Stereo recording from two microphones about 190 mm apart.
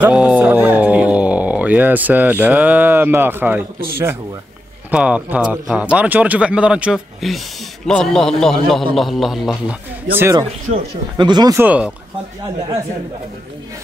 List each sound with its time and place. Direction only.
0.0 s speech: 5° right (ahead or behind)
4.9 s a man's voice: 5° right (ahead or behind)
10.1 s speech: 15° right (ahead or behind)
11.6 s speech: 5° right (ahead or behind)